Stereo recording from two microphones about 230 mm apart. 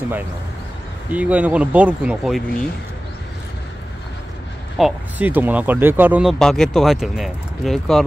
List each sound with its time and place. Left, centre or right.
1.1 s speech: centre
4.7 s speech: centre